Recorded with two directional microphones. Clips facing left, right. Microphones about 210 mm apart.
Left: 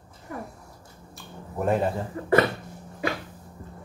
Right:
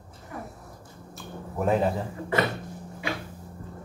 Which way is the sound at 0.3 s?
40° left (ahead or behind).